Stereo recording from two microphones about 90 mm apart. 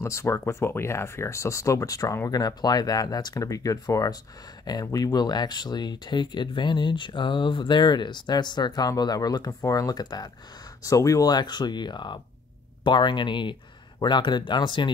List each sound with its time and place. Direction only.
0.0 s speech: 35° left (ahead or behind); by 14.9 s 60° left (ahead or behind)